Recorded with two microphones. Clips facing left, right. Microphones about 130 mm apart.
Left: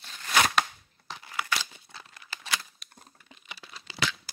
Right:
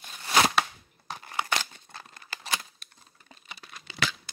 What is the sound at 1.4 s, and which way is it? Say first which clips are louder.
Crumpling: right 2 dB; 45° right (ahead or behind).